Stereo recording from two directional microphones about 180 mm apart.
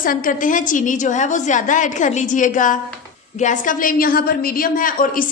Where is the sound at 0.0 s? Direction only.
50° left (ahead or behind).